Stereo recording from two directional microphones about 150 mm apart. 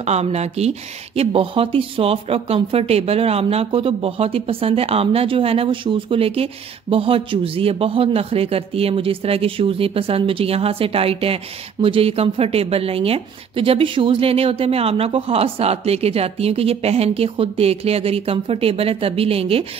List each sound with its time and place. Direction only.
0.0 s speech: 45° right (ahead or behind)